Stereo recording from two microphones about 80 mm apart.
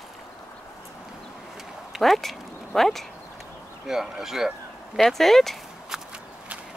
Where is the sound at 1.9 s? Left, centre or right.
Centre.